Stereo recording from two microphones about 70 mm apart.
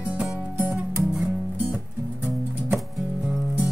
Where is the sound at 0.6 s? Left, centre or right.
Right.